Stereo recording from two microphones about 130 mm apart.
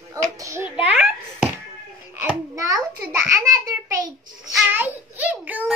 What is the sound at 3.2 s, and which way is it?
Speech, 25° right (ahead or behind).